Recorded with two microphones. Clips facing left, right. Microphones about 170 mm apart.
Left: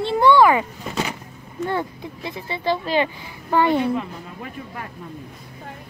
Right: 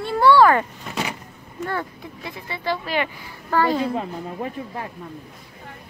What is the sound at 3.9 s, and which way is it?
Speech, 35° right (ahead or behind).